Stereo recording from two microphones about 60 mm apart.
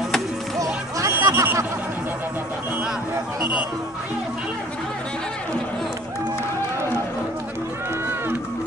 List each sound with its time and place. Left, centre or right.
0.9 s music: right